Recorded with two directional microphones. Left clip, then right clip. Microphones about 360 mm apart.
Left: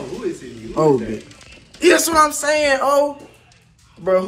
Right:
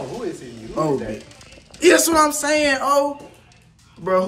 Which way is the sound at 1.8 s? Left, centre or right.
Centre.